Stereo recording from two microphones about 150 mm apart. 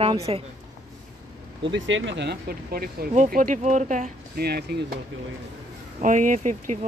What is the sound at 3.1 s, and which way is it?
Speech, 60° right (ahead or behind).